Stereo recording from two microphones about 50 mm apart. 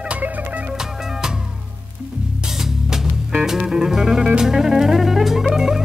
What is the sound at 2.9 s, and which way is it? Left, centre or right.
Music, centre.